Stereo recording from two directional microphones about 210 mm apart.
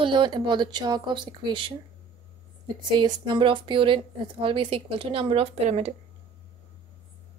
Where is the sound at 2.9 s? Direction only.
20° right (ahead or behind).